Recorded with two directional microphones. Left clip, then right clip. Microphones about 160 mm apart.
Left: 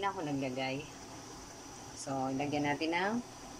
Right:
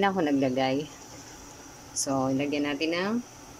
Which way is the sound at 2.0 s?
30° right (ahead or behind).